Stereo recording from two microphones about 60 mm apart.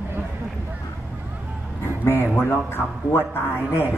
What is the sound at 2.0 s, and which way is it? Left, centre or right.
Speech, left.